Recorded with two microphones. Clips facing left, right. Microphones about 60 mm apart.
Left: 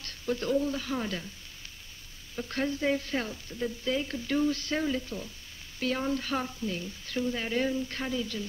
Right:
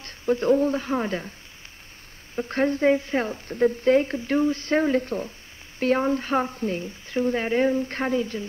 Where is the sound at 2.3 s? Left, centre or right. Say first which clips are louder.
Right 8 dB; right.